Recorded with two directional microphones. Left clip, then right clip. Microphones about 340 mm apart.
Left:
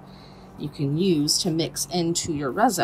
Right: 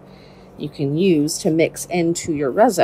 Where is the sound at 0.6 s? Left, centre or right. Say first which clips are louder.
Right 6 dB; centre.